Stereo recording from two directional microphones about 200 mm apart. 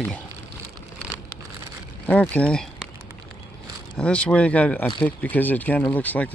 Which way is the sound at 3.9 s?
5° left (ahead or behind).